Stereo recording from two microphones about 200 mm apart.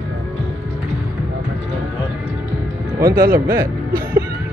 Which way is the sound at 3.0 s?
20° right (ahead or behind).